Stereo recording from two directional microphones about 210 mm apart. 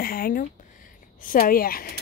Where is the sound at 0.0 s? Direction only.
45° left (ahead or behind).